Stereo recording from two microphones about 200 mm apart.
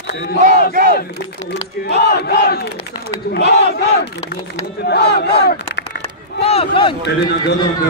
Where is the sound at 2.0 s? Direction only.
55° left (ahead or behind).